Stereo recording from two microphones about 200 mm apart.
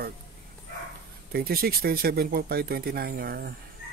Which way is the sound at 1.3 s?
50° right (ahead or behind).